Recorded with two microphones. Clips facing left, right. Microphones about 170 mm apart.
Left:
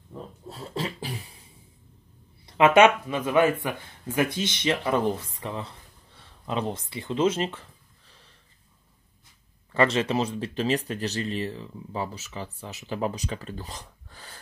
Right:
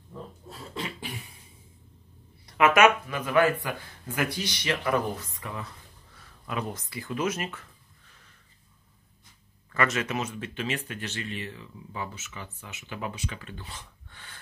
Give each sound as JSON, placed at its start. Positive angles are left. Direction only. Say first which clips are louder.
{"t": 0.5, "sound": "beatboxing", "louder": "left 5 dB", "side_deg": 35}
{"t": 2.4, "sound": "speech", "louder": "left 3 dB", "side_deg": 25}
{"t": 9.7, "sound": "speech", "louder": "left 5 dB", "side_deg": 30}